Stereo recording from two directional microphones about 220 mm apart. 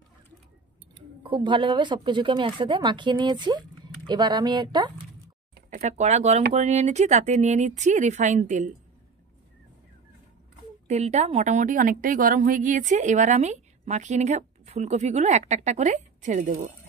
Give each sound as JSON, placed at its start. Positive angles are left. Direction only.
{"t": 1.2, "sound": "speech", "side_deg": -20}
{"t": 5.8, "sound": "a woman's voice", "side_deg": -30}
{"t": 10.9, "sound": "a woman's voice", "side_deg": -30}